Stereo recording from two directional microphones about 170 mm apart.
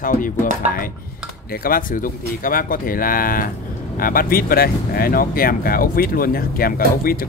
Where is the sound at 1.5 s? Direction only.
55° left (ahead or behind).